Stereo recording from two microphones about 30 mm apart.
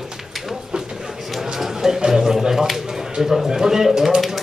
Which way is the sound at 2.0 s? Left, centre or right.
Centre.